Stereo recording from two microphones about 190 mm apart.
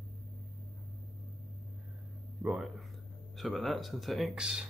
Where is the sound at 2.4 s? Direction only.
5° right (ahead or behind).